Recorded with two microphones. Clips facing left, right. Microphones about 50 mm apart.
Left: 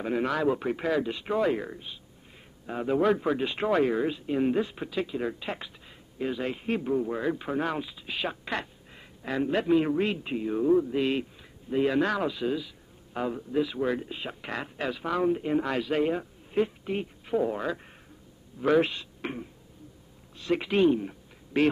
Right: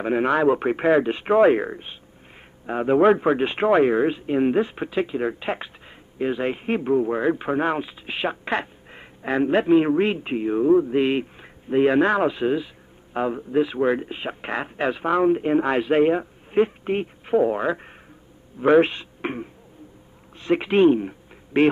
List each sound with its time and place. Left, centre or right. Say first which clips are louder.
0.0 s speech: right 7 dB; right